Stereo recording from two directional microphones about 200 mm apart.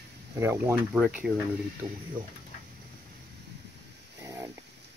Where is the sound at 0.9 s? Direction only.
Centre (ahead or behind).